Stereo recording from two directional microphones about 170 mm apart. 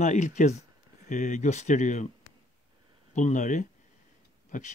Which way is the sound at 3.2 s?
45° left (ahead or behind).